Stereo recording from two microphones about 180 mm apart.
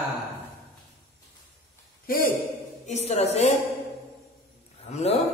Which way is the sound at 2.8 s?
35° left (ahead or behind).